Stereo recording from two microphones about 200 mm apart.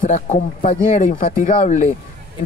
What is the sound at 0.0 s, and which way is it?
Speech, 40° left (ahead or behind).